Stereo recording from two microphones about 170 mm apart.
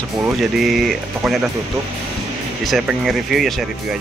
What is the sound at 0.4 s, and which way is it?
Speech, centre (ahead or behind).